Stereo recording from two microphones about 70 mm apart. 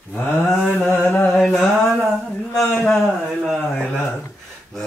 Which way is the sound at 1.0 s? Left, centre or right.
Left.